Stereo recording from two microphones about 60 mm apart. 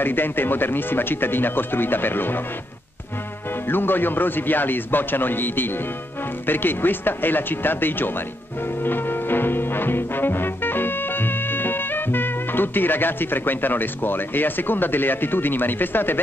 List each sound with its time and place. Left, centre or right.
0.0 s speech: left
3.6 s speech: left
8.8 s music: left